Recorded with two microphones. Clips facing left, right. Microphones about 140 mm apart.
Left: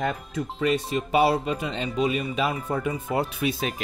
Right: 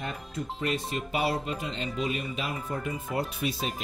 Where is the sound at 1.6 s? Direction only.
75° left (ahead or behind).